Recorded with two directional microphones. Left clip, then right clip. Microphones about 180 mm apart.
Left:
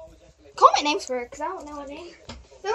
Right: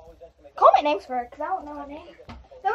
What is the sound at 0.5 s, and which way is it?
Speech, 20° right (ahead or behind).